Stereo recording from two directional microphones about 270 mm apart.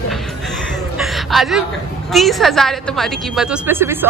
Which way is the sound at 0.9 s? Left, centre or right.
Centre.